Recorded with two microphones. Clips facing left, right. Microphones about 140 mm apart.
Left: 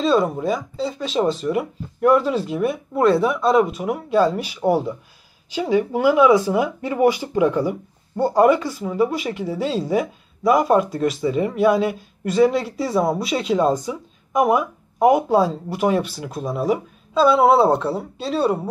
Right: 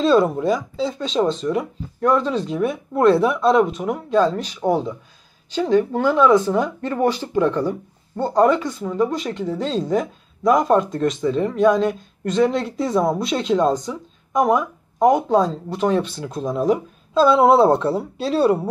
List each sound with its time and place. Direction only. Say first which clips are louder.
0.0 s speech: right 2 dB; centre (ahead or behind)